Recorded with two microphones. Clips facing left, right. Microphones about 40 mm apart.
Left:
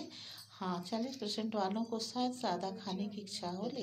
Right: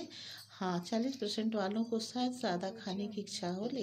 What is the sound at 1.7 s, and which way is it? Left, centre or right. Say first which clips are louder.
Speech: right 2 dB; centre.